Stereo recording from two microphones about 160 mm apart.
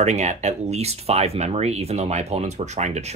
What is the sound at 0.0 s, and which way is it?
Speech, 45° right (ahead or behind).